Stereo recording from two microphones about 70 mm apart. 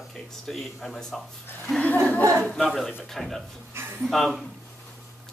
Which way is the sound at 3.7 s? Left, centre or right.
Right.